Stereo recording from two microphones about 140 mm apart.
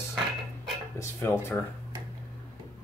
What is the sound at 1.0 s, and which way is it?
Speech, 20° left (ahead or behind).